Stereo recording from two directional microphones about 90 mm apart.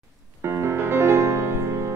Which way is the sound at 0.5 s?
30° right (ahead or behind).